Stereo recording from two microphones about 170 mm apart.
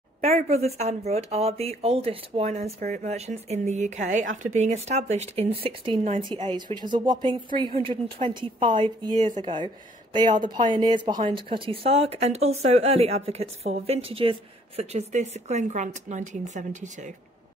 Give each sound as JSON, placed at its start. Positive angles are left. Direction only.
{"t": 0.2, "sound": "a woman's voice", "side_deg": -40}
{"t": 10.7, "sound": "a woman's voice", "side_deg": -25}